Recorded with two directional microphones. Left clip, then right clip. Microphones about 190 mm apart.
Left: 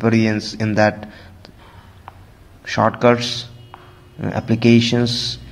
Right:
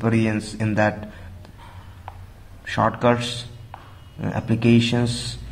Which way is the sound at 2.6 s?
15° left (ahead or behind).